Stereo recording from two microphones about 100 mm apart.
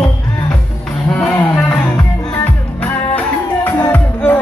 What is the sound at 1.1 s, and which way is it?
Cattle, 10° left (ahead or behind).